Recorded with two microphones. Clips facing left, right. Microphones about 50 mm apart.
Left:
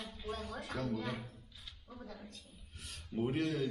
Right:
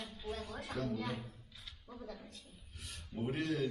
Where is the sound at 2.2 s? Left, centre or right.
Centre.